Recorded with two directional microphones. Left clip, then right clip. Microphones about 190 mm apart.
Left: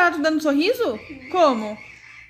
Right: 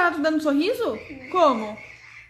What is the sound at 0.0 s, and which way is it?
Speech, 30° left (ahead or behind).